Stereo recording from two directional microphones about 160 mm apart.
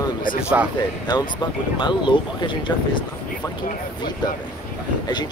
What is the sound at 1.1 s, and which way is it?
Speech, 30° left (ahead or behind).